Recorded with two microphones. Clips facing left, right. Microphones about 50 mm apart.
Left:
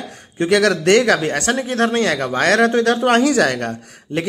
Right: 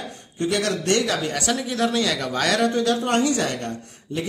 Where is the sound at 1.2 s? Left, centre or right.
Left.